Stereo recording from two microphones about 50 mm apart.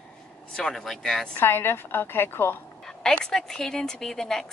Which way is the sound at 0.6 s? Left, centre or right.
Centre.